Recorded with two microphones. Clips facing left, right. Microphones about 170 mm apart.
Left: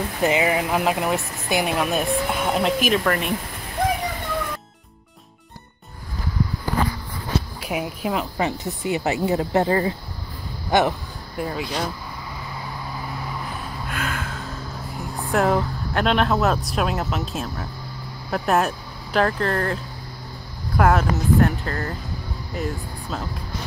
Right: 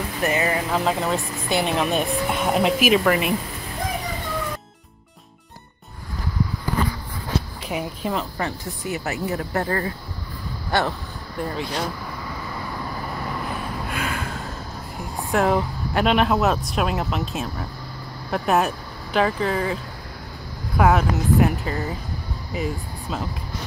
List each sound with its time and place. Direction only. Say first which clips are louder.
0.2 s speech: left 3 dB; 15° left (ahead or behind); by 3.3 s 5° right (ahead or behind)
7.6 s speech: left 1 dB; 5° left (ahead or behind)
8.4 s speech: left 4 dB; 20° left (ahead or behind)
10.7 s vehicle: left 4 dB; 15° left (ahead or behind)
11.4 s speech: even; 5° left (ahead or behind)
13.8 s a sound: left 2 dB; centre (ahead or behind)
15.3 s speech: even; centre (ahead or behind)